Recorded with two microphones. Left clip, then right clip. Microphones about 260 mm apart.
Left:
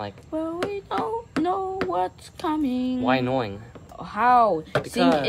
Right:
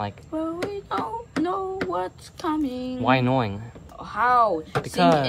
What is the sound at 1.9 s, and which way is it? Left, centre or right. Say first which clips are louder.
Speech: left 2 dB; left.